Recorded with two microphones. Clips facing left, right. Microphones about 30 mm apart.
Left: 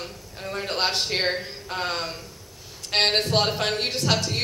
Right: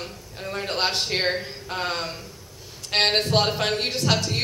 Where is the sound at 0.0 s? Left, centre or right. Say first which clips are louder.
Right 1 dB; centre.